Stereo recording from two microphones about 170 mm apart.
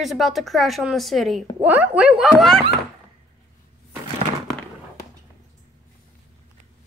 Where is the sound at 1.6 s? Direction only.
10° right (ahead or behind).